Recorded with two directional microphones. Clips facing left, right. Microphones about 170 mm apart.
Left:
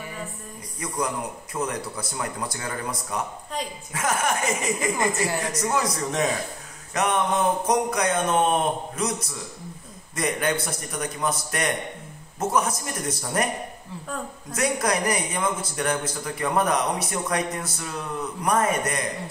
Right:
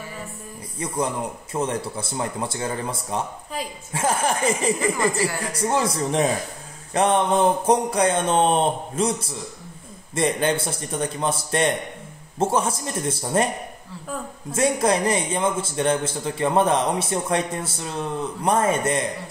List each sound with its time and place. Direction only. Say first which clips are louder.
0.7 s a man's voice: right 3 dB; 25° right (ahead or behind)
14.5 s a man's voice: right 4 dB; 25° right (ahead or behind)